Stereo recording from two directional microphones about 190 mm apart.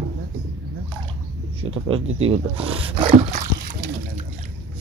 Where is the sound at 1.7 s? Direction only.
30° right (ahead or behind).